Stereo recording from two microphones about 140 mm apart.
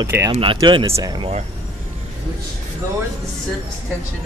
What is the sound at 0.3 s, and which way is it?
Speech, 40° right (ahead or behind).